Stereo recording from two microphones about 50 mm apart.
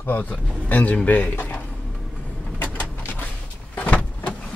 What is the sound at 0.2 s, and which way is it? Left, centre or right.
Speech, left.